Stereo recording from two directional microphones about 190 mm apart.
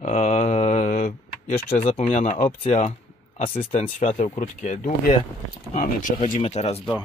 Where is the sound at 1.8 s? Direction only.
30° left (ahead or behind).